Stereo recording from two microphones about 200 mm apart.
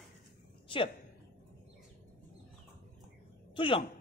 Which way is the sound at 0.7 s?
25° left (ahead or behind).